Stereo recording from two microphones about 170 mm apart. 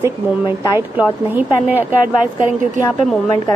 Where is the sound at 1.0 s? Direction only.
10° right (ahead or behind).